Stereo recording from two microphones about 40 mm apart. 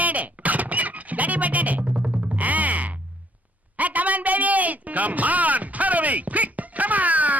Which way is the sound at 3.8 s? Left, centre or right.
Right.